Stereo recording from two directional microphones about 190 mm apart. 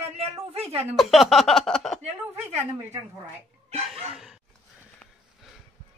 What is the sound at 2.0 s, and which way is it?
Speech, 35° right (ahead or behind).